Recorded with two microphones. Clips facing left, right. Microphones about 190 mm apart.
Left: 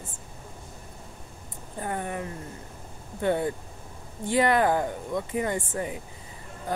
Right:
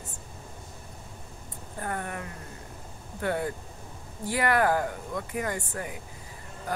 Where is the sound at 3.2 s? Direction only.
20° left (ahead or behind).